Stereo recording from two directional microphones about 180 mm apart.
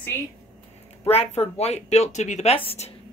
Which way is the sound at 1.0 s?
35° left (ahead or behind).